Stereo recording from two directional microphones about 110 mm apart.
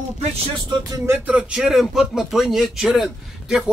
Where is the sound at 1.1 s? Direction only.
15° right (ahead or behind).